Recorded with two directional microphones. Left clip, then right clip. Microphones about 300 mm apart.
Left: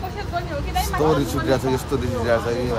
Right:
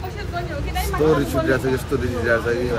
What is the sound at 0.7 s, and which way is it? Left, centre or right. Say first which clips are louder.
Speech: right 1 dB; centre.